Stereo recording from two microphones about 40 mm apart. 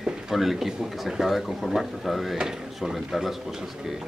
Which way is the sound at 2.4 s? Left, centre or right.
Centre.